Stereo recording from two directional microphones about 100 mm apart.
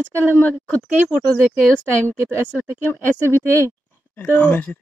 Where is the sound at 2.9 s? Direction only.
20° left (ahead or behind).